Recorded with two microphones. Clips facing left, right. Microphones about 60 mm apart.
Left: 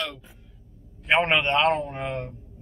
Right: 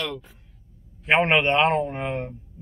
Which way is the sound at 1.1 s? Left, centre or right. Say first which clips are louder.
Right 2 dB; centre.